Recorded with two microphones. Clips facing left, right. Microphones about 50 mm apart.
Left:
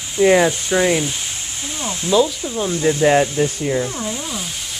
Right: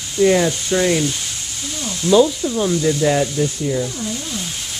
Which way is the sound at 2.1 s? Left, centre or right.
Centre.